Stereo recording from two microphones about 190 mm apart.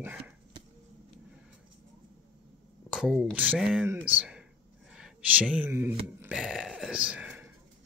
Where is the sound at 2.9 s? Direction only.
5° right (ahead or behind).